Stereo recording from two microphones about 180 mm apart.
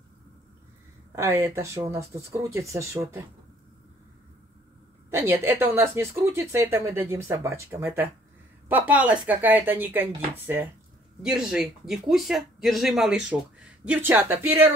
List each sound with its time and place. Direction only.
1.1 s speech: 15° right (ahead or behind)
5.1 s speech: 15° right (ahead or behind)